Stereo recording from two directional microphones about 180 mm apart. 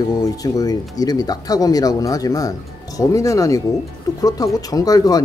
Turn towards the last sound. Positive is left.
turn(degrees=20)  # may be behind; listen again after turning